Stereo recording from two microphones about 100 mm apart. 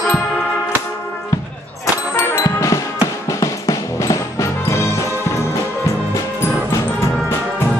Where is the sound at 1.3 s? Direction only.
30° left (ahead or behind).